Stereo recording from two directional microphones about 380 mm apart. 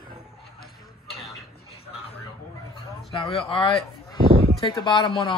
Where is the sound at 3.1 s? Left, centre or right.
Centre.